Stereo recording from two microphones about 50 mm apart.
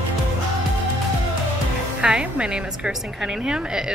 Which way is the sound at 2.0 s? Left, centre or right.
Right.